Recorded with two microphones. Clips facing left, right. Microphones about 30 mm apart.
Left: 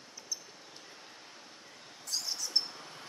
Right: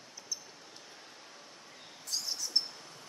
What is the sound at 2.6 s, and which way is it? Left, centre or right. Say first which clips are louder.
Cricket: left 1 dB; centre.